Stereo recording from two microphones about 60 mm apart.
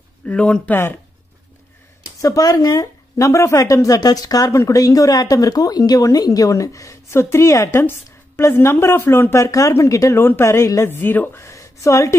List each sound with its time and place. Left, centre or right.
0.3 s speech: centre
0.7 s speech: left
2.2 s speech: left
9.3 s speech: left
10.1 s speech: left
10.8 s speech: left
11.3 s a woman's voice: left